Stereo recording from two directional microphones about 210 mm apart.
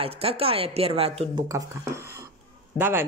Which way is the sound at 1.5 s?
15° right (ahead or behind).